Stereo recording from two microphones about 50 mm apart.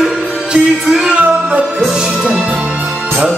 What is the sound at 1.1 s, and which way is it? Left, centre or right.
Music, right.